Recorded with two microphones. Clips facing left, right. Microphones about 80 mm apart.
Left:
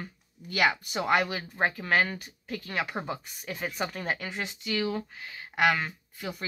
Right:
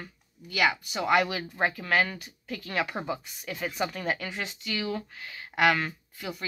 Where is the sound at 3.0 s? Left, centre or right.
Left.